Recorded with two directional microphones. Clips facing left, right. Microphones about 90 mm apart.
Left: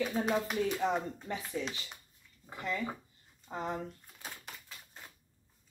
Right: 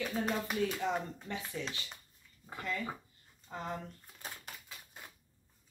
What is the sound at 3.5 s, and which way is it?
Speech, 20° left (ahead or behind).